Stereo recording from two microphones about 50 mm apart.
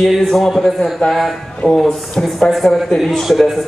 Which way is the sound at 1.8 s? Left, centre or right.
Centre.